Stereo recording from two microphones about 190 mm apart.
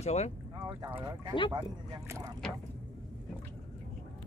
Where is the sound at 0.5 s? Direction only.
15° right (ahead or behind).